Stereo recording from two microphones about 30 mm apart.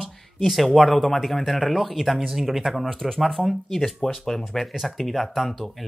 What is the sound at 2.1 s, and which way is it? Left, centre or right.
Speech, centre.